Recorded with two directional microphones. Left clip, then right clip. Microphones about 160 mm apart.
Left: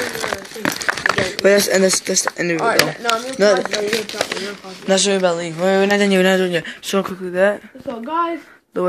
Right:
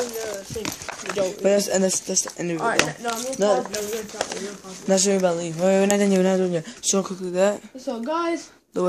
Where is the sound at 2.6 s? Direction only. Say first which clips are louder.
Left 4 dB; 50° left (ahead or behind).